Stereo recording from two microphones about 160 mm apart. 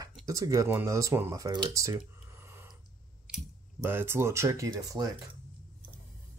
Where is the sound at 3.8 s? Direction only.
15° right (ahead or behind).